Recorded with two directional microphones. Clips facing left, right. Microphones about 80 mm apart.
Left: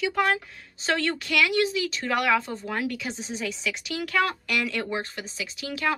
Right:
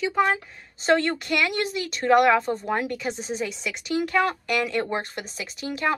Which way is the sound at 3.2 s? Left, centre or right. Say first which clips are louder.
Right 3 dB; right.